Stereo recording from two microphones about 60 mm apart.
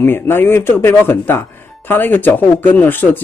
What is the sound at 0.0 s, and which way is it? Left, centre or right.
Speech, left.